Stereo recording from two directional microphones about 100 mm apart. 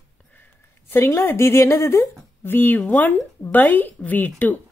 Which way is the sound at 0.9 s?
25° left (ahead or behind).